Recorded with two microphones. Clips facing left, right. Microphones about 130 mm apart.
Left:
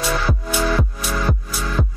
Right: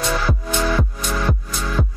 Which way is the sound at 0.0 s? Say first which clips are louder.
Even; 5° left (ahead or behind).